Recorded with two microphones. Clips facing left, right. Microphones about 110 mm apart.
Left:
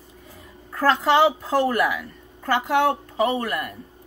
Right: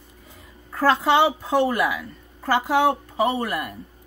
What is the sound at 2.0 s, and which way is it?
Speech, 15° right (ahead or behind).